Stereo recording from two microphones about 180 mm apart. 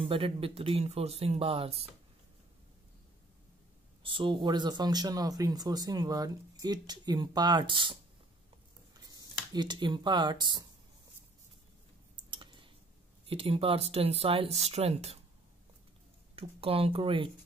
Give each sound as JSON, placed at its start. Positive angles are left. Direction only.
{"t": 0.0, "sound": "speech", "side_deg": -30}
{"t": 4.0, "sound": "speech", "side_deg": -30}
{"t": 12.3, "sound": "a sound", "side_deg": -25}
{"t": 13.3, "sound": "speech", "side_deg": -30}
{"t": 16.3, "sound": "speech", "side_deg": -30}